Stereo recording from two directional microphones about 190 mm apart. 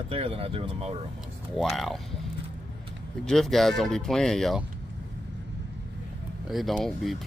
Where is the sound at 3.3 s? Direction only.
Centre (ahead or behind).